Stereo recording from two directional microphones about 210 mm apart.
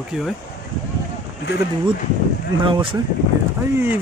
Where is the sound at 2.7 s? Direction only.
25° right (ahead or behind).